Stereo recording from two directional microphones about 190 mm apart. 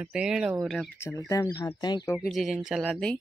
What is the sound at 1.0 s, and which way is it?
Speech, 15° left (ahead or behind).